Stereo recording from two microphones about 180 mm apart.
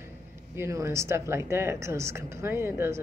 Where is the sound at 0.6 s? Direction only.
15° right (ahead or behind).